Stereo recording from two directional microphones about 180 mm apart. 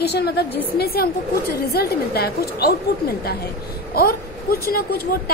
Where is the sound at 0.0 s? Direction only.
65° left (ahead or behind).